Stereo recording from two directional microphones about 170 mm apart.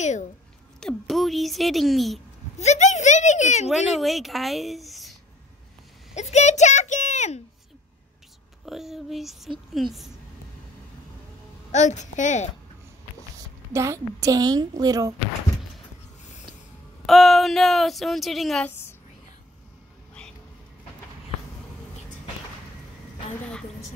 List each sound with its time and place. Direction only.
0.7 s speech: centre (ahead or behind)
2.6 s a child's voice: 45° left (ahead or behind)
3.7 s speech: centre (ahead or behind)
6.1 s a child's voice: 40° left (ahead or behind)
8.6 s speech: centre (ahead or behind)
11.7 s a child's voice: 45° left (ahead or behind)
13.7 s a woman's voice: 20° right (ahead or behind)
17.0 s speech: centre (ahead or behind)